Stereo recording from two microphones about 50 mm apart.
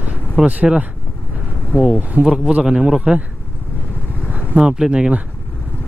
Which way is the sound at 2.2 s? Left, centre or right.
Centre.